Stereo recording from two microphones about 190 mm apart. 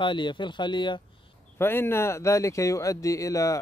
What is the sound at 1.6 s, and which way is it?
Speech, 10° left (ahead or behind).